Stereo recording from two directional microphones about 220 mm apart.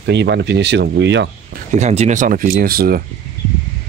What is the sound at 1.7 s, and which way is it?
Speech, 30° right (ahead or behind).